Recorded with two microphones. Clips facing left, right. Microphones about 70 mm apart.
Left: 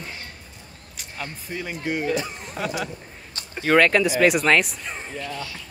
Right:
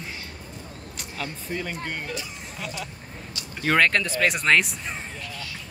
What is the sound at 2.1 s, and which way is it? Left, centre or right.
Speech, left.